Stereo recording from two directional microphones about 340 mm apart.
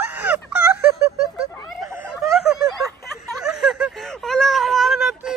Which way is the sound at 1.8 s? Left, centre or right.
Centre.